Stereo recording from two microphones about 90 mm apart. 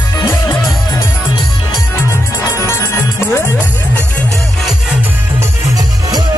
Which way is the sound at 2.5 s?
30° left (ahead or behind).